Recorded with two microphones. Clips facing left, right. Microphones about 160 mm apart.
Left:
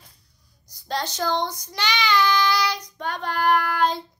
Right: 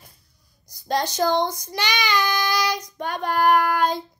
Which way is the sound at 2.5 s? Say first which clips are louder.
Right 1 dB; 15° right (ahead or behind).